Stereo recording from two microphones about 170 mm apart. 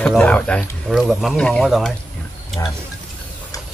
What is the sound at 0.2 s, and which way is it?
Speech, 5° left (ahead or behind).